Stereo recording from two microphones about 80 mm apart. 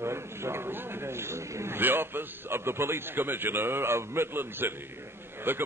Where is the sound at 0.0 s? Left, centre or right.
Right.